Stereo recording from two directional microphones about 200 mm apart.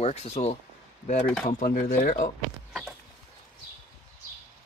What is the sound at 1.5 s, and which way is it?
Speech, 45° left (ahead or behind).